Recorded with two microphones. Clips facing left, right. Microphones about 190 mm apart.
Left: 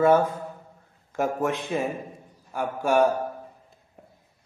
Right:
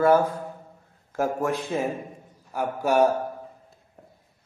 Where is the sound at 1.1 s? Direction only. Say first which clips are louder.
Even; centre (ahead or behind).